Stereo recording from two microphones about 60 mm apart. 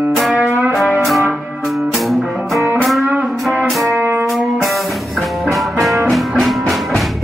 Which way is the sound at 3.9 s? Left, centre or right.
Right.